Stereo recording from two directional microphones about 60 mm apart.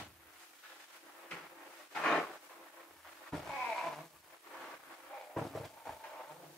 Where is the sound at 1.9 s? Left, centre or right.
Centre.